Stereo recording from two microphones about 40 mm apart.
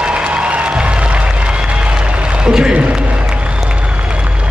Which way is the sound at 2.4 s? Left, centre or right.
Right.